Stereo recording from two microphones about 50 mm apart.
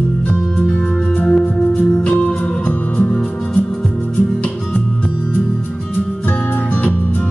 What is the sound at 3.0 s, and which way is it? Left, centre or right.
Music, centre.